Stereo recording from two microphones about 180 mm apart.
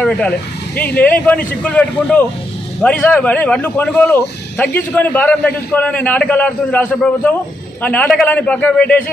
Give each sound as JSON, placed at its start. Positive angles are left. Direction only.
{"t": 0.0, "sound": "speech", "side_deg": 5}